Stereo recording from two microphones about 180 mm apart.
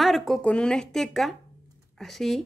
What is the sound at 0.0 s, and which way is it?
Speech, centre (ahead or behind).